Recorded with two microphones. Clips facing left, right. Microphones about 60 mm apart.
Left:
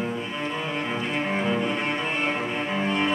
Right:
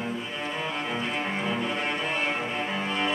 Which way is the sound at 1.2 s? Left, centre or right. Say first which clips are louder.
Left 4 dB; centre.